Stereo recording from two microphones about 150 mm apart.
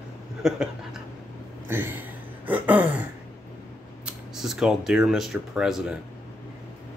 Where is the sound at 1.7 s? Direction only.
15° right (ahead or behind).